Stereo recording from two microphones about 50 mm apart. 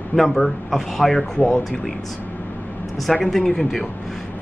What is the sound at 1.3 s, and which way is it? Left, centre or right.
Speech, centre.